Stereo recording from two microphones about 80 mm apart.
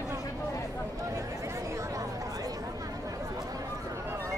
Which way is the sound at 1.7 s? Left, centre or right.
Right.